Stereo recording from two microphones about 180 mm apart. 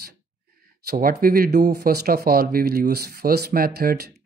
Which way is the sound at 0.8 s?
55° right (ahead or behind).